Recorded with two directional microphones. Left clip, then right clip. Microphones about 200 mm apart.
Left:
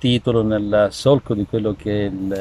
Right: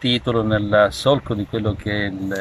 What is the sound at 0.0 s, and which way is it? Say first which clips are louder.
Speech: left 1 dB; 10° left (ahead or behind).